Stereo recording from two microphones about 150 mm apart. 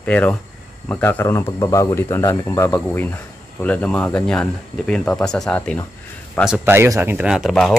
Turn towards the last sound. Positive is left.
turn(degrees=0)  # may be behind; listen again after turning